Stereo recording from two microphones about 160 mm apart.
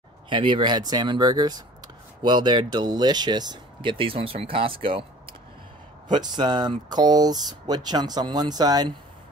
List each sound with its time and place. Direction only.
0.3 s speech: 30° right (ahead or behind)
6.0 s speech: 30° right (ahead or behind)